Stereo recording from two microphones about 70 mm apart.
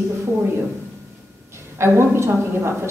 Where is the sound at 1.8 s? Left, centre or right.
Right.